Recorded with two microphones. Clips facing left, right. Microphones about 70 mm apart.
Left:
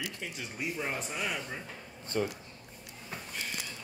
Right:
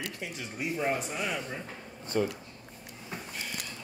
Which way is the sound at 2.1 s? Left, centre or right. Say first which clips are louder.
Right 3 dB; right.